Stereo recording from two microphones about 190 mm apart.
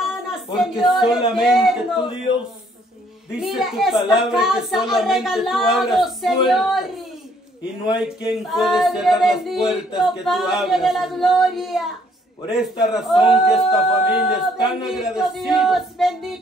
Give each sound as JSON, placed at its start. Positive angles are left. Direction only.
{"t": 0.0, "sound": "a woman's voice", "side_deg": 0}
{"t": 3.3, "sound": "a woman's voice", "side_deg": 0}